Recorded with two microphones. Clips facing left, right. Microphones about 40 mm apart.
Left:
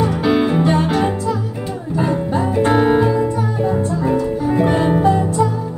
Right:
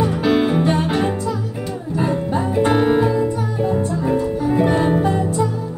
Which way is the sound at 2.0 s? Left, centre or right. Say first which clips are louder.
Left 2 dB; centre.